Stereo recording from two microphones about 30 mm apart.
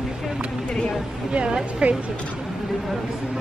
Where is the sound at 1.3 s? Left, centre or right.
Right.